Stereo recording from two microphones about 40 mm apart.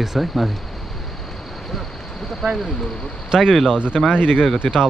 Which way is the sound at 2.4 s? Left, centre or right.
Centre.